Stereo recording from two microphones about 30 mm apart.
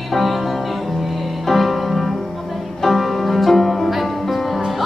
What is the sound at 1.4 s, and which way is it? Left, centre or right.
Music, centre.